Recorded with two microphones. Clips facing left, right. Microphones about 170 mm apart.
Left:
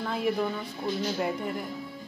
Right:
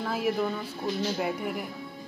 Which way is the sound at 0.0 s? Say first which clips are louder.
Even; 5° right (ahead or behind).